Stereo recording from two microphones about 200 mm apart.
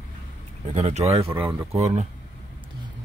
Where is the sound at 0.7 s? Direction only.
35° right (ahead or behind).